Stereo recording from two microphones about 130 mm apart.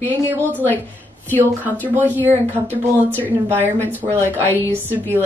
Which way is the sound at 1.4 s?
15° right (ahead or behind).